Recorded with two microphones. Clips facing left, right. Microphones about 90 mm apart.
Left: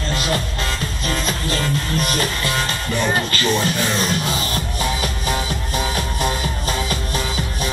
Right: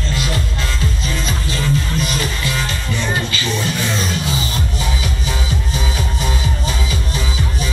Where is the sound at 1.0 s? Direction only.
50° left (ahead or behind).